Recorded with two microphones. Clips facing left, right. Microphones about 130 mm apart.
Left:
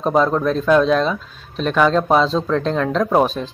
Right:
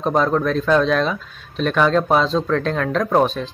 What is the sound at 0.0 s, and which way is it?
Speech, 5° left (ahead or behind).